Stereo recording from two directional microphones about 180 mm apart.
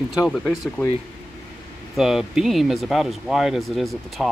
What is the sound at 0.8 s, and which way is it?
Speech, 10° left (ahead or behind).